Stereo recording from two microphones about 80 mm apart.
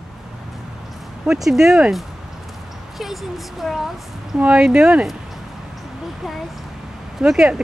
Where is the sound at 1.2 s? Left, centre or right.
Centre.